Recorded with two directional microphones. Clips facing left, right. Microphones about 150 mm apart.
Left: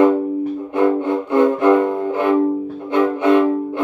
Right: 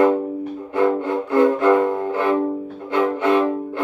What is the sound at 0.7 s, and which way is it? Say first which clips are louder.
Music: left 2 dB; 15° left (ahead or behind).